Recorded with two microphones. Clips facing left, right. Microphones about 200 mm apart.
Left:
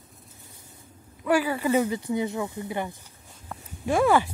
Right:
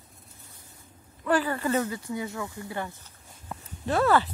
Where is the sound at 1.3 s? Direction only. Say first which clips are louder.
Left 2 dB; 10° left (ahead or behind).